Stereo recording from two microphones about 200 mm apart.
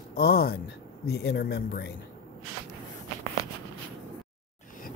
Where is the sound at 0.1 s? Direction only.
50° left (ahead or behind).